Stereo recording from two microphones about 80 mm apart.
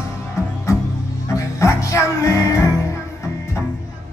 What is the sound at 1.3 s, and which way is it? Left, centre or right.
Music, left.